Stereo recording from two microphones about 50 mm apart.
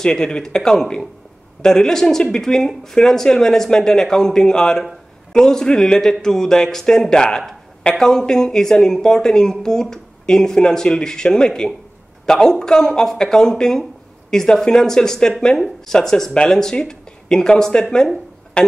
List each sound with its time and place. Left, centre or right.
0.0 s speech: centre